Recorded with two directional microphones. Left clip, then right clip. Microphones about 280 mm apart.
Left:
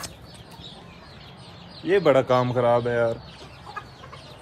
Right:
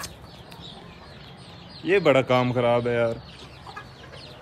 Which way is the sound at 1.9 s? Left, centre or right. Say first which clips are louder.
Left 1 dB; centre.